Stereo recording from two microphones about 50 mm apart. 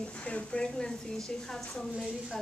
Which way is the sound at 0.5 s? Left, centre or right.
Centre.